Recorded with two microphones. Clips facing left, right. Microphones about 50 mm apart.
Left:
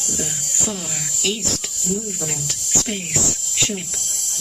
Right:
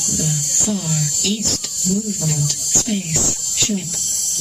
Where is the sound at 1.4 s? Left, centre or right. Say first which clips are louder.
Right 2 dB; right.